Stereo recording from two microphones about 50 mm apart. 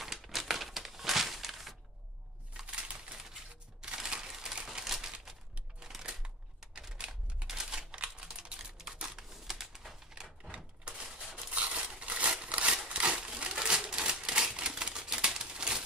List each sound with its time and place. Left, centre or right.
0.0 s crumpling: centre
2.5 s typewriter: right
3.8 s crushing: centre
4.6 s crumpling: centre
6.6 s typing: centre
9.3 s typing: centre
11.3 s a sound: right